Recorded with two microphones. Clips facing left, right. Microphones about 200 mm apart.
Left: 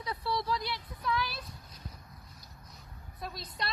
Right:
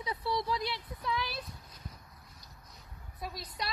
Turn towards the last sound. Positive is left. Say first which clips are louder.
# even
turn(degrees=-10)  # may be behind; listen again after turning